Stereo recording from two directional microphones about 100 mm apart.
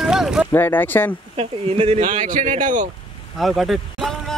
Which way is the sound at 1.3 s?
75° right (ahead or behind).